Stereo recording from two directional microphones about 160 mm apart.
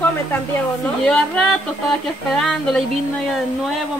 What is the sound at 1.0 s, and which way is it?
A woman's voice, 5° left (ahead or behind).